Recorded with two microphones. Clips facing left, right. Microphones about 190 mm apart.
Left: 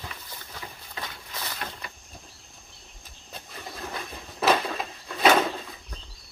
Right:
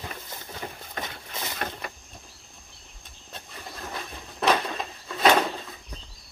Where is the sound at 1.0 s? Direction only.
20° right (ahead or behind).